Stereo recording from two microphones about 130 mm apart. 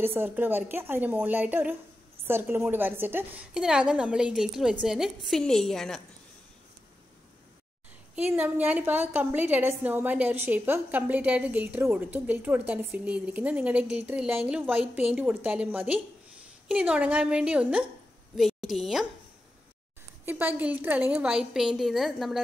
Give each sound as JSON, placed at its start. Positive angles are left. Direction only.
{"t": 0.0, "sound": "a woman's voice", "side_deg": -15}
{"t": 8.2, "sound": "a woman's voice", "side_deg": -15}
{"t": 20.2, "sound": "a woman's voice", "side_deg": -15}